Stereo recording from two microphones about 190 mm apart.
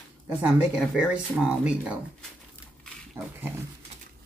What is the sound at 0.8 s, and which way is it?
Speech, 5° right (ahead or behind).